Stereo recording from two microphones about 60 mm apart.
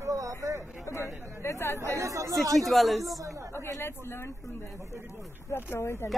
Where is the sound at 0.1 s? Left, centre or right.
Right.